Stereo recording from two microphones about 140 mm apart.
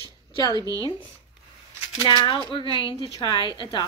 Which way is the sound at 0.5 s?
25° right (ahead or behind).